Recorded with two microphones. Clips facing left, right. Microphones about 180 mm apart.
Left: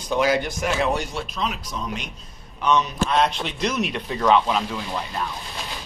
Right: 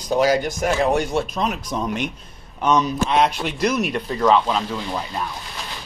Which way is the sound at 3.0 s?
15° right (ahead or behind).